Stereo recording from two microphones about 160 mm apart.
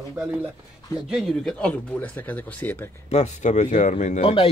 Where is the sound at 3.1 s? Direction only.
45° left (ahead or behind).